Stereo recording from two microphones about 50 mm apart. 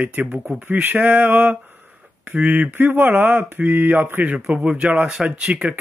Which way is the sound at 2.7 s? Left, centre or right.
Right.